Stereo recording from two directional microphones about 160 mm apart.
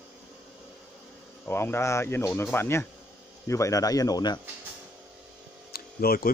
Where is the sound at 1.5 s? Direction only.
15° left (ahead or behind).